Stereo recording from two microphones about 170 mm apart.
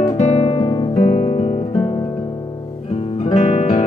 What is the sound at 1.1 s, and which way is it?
Music, 40° left (ahead or behind).